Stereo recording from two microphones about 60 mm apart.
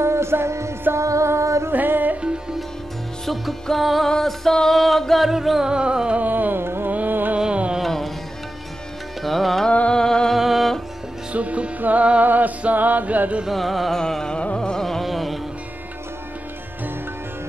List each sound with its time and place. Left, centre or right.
0.0 s music: right
1.7 s music: right
3.3 s music: centre
5.7 s carnatic music: centre
6.2 s carnatic music: right
6.9 s music: right
7.3 s music: centre
7.8 s music: centre
9.2 s music: centre
9.7 s music: centre
11.3 s music: right
13.5 s music: centre